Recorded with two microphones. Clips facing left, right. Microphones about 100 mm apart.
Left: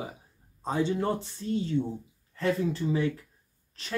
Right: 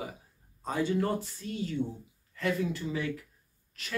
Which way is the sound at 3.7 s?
30° left (ahead or behind).